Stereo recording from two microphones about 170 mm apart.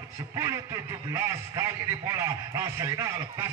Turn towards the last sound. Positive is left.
turn(degrees=-20)  # may be behind; listen again after turning